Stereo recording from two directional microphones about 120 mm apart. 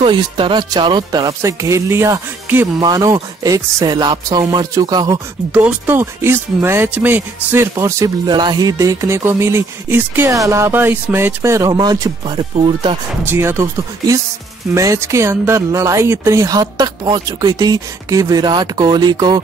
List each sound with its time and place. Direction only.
0.0 s speech: 45° right (ahead or behind)
1.4 s speech: 25° right (ahead or behind)
2.8 s speech: 30° right (ahead or behind)
5.5 s speech: 10° right (ahead or behind)
7.7 s speech: 30° right (ahead or behind)
12.5 s speech: 45° right (ahead or behind)
13.3 s speech: 20° right (ahead or behind)